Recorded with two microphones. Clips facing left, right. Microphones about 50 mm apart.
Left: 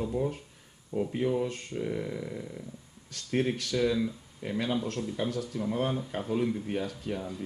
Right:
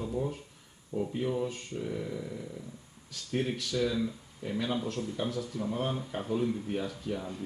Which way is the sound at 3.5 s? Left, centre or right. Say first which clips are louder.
Left 2 dB; left.